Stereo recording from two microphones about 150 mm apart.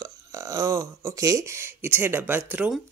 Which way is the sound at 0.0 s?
20° right (ahead or behind).